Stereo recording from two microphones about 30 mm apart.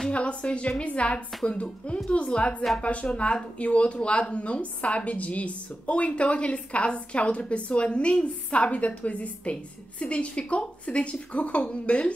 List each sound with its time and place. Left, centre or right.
0.1 s a woman's voice: left